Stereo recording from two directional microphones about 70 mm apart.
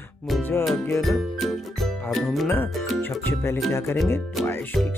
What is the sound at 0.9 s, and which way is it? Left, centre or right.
Music, centre.